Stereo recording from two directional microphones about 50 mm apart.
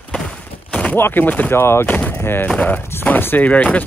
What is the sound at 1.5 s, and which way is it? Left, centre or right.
Speech, left.